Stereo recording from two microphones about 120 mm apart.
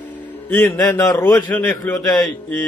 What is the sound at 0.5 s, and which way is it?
Speech, 20° left (ahead or behind).